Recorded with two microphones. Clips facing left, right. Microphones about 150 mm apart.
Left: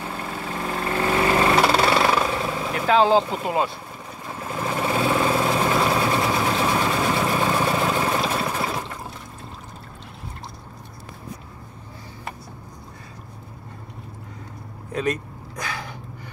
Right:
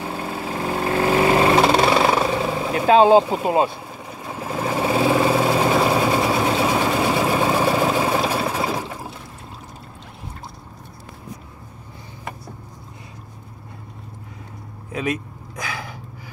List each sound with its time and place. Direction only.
0.0 s vehicle: 25° right (ahead or behind)
2.6 s speech: 25° right (ahead or behind)
4.3 s vehicle: 15° right (ahead or behind)
4.8 s vehicle: 25° right (ahead or behind); by 8.9 s 10° right (ahead or behind)
14.9 s a sound: 5° right (ahead or behind)